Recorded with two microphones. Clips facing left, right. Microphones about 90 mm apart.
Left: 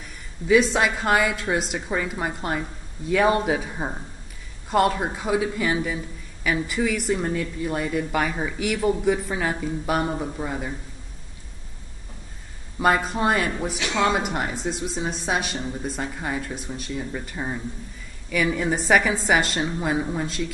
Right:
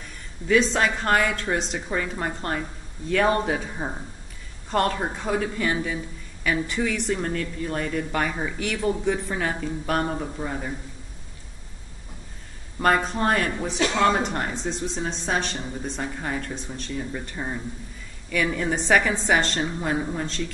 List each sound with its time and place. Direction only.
0.5 s a man's voice: 5° left (ahead or behind)
12.7 s a man's voice: 5° left (ahead or behind)
13.7 s speech: 40° right (ahead or behind)
14.0 s a woman's voice: 5° left (ahead or behind)